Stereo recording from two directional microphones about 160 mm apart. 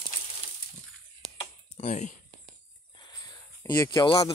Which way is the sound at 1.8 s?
50° left (ahead or behind).